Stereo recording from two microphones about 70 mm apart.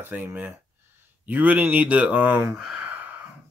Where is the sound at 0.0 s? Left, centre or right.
Right.